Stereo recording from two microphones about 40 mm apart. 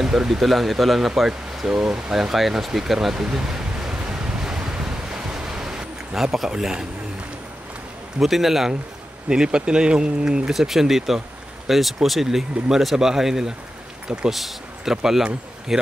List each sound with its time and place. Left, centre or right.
0.0 s speech: centre
3.2 s a sound: centre
4.4 s ocean: centre
6.3 s speech: centre
8.2 s speech: centre
9.3 s speech: centre
10.5 s speech: centre